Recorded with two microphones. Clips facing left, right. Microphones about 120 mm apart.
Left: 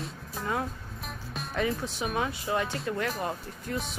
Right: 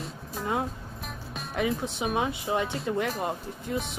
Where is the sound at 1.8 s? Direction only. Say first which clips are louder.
Right 2 dB; 20° right (ahead or behind).